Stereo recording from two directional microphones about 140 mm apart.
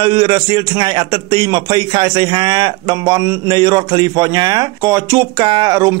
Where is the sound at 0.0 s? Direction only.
35° right (ahead or behind).